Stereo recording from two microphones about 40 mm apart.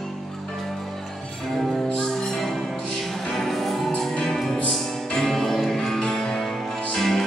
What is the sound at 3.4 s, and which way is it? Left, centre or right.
Music, centre.